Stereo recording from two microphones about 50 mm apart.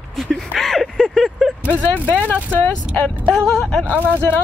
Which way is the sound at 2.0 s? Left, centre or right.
Left.